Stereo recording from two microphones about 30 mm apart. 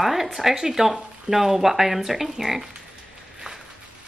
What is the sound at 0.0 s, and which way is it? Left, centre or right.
Speech, centre.